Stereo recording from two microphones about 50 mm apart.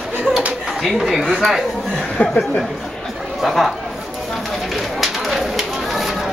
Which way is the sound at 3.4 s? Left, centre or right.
Centre.